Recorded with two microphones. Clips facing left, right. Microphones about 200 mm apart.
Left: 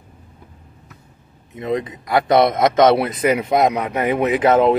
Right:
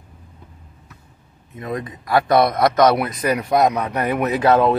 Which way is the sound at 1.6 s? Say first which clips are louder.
Left 5 dB; 20° left (ahead or behind).